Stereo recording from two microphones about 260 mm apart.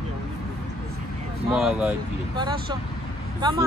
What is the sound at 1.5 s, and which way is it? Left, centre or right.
Speech, centre.